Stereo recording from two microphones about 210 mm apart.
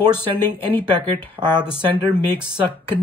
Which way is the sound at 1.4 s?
20° right (ahead or behind).